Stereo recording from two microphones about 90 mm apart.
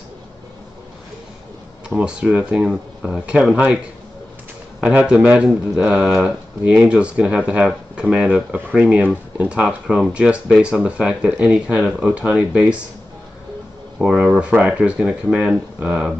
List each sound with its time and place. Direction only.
2.0 s speech: 10° right (ahead or behind)
13.9 s speech: 10° right (ahead or behind)